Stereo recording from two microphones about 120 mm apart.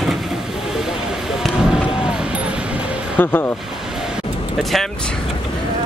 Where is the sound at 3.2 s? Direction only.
15° left (ahead or behind).